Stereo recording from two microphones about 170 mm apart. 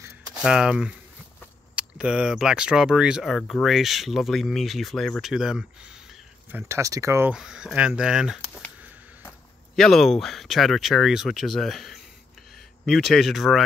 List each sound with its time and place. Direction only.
0.4 s speech: 5° right (ahead or behind)
6.5 s speech: 15° right (ahead or behind)
7.3 s speech: 5° right (ahead or behind)
9.8 s speech: centre (ahead or behind)